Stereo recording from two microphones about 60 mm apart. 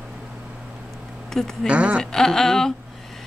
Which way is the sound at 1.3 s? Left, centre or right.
Centre.